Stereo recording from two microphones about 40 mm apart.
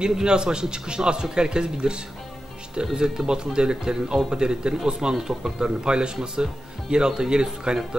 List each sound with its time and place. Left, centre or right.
0.0 s speech: right